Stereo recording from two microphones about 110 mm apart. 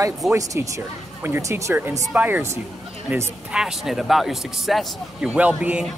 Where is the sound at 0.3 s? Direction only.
25° right (ahead or behind).